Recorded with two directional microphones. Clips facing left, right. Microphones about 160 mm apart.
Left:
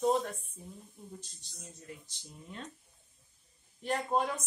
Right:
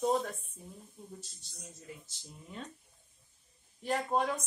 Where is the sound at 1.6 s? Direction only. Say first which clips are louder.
Even; 5° right (ahead or behind).